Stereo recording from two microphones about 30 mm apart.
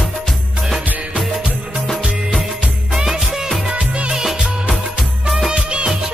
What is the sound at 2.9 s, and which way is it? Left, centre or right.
Music, centre.